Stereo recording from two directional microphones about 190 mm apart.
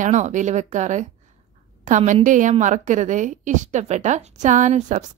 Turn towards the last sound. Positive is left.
turn(degrees=-40)  # may be behind; listen again after turning